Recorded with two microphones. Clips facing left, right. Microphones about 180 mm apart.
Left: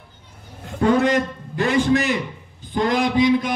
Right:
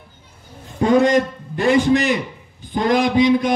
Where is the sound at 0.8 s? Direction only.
15° right (ahead or behind).